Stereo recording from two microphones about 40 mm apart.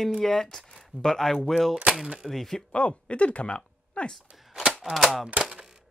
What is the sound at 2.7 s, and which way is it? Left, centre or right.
Speech, left.